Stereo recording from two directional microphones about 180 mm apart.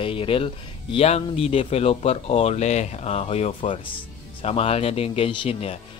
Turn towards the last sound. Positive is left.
turn(degrees=30)  # may be behind; listen again after turning